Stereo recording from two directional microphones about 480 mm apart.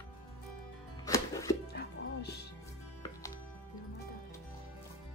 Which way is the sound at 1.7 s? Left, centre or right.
Centre.